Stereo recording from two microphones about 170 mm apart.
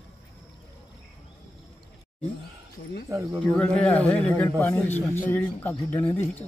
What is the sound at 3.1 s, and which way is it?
Speech, 15° right (ahead or behind).